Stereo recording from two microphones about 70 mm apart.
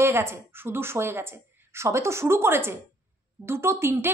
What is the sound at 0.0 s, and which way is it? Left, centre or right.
A woman's voice, right.